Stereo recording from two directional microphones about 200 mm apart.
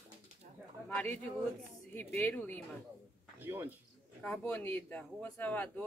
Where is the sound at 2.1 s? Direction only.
10° left (ahead or behind).